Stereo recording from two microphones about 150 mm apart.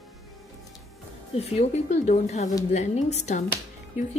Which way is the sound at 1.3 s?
45° left (ahead or behind).